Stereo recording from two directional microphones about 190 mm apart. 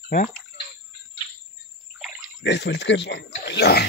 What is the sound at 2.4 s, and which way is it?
Speech, 65° left (ahead or behind).